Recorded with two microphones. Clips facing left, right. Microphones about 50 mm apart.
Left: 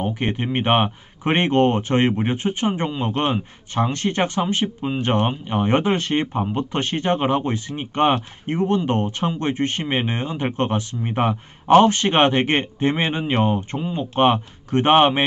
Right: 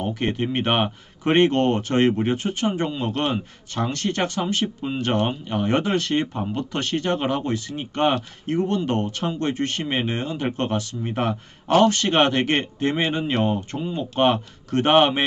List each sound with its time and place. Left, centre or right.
0.0 s speech: left